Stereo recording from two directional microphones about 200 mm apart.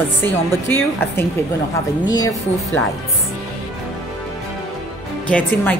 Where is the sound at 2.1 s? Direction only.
15° left (ahead or behind).